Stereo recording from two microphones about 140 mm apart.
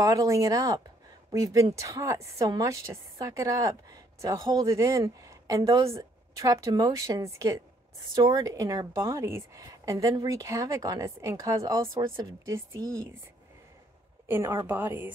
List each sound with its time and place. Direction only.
0.0 s a woman's voice: 25° right (ahead or behind)
14.2 s a woman's voice: 15° right (ahead or behind)